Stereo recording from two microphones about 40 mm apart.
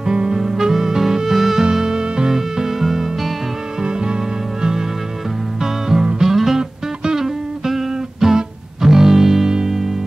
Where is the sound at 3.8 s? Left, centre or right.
Centre.